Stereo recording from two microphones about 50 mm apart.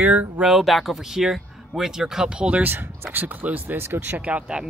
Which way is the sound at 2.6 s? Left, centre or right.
Right.